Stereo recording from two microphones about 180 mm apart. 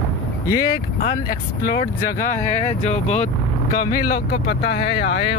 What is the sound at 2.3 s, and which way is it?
Speech, 40° left (ahead or behind).